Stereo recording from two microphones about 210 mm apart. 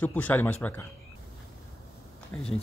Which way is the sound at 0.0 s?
5° left (ahead or behind).